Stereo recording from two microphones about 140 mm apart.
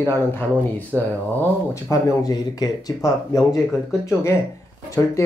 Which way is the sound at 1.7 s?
25° left (ahead or behind).